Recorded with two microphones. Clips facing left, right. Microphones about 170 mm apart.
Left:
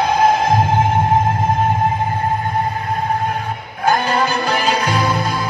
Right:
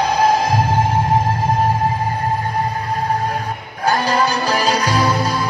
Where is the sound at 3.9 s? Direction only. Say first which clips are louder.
Even; 35° right (ahead or behind).